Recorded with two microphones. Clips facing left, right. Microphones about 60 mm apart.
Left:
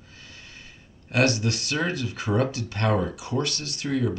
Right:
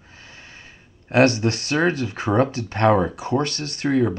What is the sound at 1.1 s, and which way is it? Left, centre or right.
Speech, right.